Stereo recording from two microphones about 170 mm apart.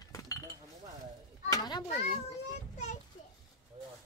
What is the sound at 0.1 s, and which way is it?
Chink, 20° left (ahead or behind).